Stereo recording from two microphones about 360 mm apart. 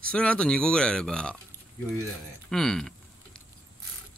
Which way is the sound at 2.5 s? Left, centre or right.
Centre.